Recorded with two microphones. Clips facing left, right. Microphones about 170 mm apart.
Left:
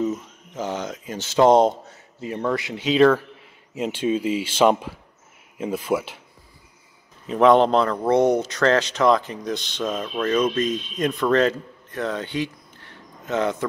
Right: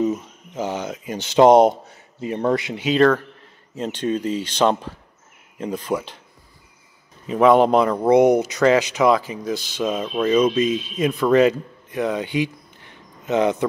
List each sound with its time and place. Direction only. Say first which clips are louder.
0.0 s speech: right 3 dB; 10° right (ahead or behind)
2.8 s speech: left 1 dB; centre (ahead or behind)
7.2 s speech: right 1 dB; 5° right (ahead or behind)